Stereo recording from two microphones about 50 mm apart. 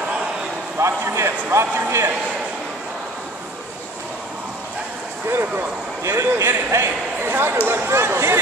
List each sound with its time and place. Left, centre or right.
0.7 s speech: right
6.0 s a man's voice: right
7.2 s speech: right